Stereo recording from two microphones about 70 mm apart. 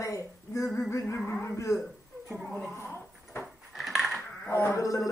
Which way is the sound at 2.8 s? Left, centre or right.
Left.